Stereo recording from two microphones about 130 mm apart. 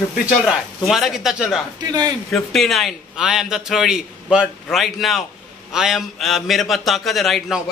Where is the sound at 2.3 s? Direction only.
Centre (ahead or behind).